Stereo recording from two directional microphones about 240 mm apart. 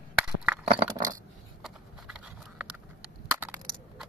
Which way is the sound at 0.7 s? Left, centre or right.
Right.